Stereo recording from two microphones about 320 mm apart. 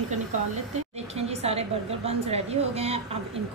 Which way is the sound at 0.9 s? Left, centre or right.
Centre.